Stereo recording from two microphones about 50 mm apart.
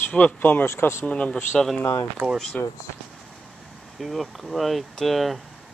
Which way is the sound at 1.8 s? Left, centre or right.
Left.